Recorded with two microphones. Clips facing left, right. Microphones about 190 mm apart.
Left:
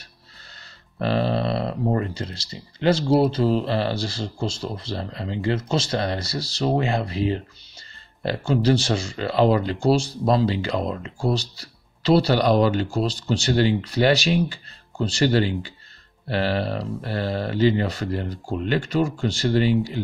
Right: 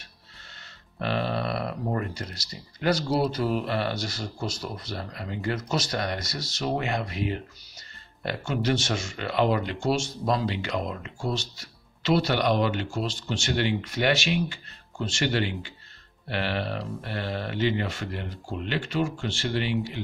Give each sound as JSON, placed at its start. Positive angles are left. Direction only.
{"t": 0.9, "sound": "speech", "side_deg": 35}